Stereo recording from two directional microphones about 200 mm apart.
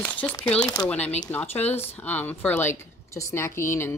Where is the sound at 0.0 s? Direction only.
5° left (ahead or behind).